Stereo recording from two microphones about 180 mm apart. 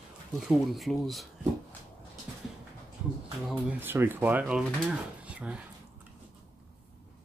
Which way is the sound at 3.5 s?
10° right (ahead or behind).